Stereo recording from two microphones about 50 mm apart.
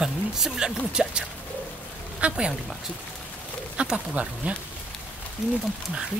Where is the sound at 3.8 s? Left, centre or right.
Right.